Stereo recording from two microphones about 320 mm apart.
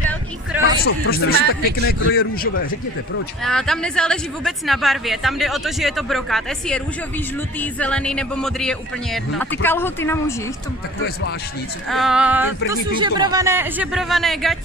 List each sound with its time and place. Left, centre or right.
0.5 s music: centre
0.8 s speech: left
3.4 s a woman's voice: centre
7.8 s a woman's voice: centre
11.9 s a woman's voice: centre